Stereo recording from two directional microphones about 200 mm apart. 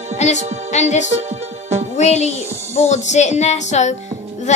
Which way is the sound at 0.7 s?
35° left (ahead or behind).